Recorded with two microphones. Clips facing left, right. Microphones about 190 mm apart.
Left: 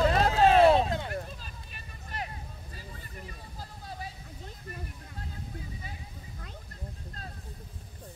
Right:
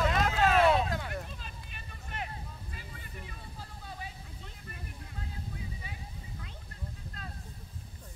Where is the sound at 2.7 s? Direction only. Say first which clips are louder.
Left 1 dB; 40° left (ahead or behind).